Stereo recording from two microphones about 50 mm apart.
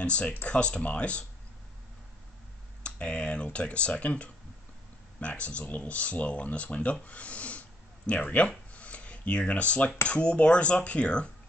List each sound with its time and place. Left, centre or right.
0.0 s speech: left
2.8 s speech: left
8.5 s a sound: left
10.0 s speech: left